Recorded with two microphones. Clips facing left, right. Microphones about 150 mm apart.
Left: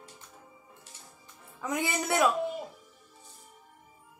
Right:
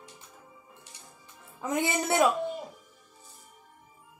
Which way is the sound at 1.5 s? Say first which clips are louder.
Right 3 dB; 25° right (ahead or behind).